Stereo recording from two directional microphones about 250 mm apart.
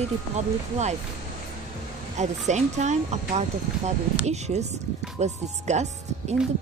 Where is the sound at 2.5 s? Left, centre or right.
Right.